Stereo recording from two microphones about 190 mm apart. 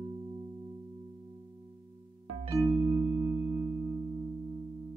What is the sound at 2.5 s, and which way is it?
Music, 20° right (ahead or behind).